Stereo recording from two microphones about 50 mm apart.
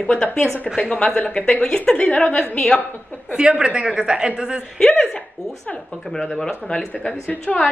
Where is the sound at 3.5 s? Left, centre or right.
Centre.